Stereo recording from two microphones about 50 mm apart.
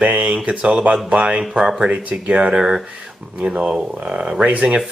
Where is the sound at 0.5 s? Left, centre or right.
Right.